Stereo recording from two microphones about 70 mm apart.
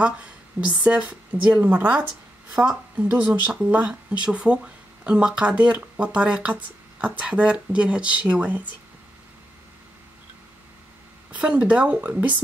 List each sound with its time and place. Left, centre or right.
0.0 s speech: centre
11.3 s speech: centre